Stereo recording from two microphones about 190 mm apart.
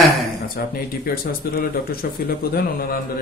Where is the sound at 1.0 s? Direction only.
50° left (ahead or behind).